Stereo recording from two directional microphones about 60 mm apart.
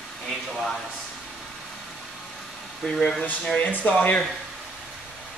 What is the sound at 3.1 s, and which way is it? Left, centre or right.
Speech, left.